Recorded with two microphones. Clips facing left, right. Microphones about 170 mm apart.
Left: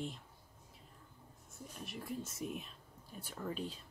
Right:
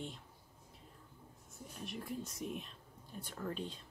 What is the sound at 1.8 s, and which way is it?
Speech, centre (ahead or behind).